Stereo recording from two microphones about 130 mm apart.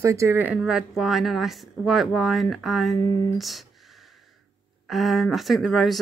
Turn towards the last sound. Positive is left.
turn(degrees=0)  # may be behind; listen again after turning